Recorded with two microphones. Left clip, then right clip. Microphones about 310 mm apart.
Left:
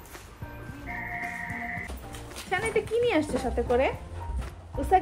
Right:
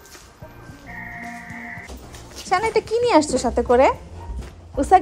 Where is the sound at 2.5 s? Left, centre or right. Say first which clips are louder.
Right 8 dB; centre.